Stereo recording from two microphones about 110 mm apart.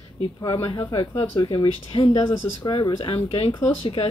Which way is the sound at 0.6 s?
40° left (ahead or behind).